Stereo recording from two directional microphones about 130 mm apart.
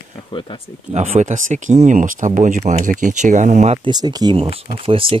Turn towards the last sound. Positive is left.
turn(degrees=-45)  # may be behind; listen again after turning